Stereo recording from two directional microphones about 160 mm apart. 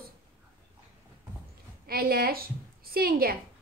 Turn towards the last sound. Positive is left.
turn(degrees=-70)  # may be behind; listen again after turning